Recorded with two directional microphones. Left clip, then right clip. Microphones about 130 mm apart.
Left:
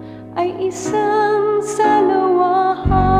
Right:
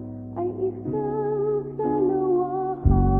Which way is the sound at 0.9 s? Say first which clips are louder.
Left 14 dB; 30° left (ahead or behind).